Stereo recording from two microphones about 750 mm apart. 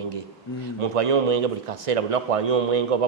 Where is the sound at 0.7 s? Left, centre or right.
Right.